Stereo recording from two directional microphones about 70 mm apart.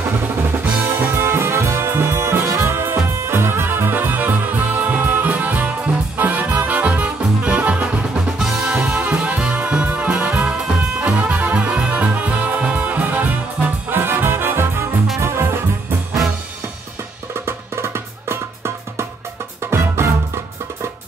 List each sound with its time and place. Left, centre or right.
0.4 s brass instrument: right
6.1 s music: right
17.5 s music: right